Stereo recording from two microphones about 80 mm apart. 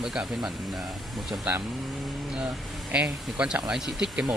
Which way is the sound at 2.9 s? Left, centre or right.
Centre.